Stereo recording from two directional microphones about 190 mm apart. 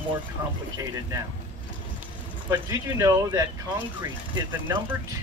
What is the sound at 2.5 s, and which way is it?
Speech, 15° right (ahead or behind).